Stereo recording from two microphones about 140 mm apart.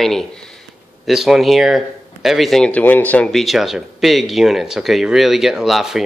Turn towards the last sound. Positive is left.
turn(degrees=0)  # may be behind; listen again after turning